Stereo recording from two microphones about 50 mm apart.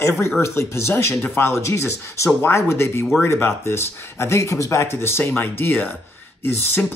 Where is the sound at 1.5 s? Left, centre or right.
Left.